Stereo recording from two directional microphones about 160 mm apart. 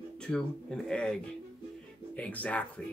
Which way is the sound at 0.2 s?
5° left (ahead or behind).